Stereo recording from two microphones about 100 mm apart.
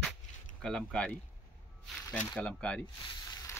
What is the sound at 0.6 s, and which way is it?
Speech, 5° left (ahead or behind).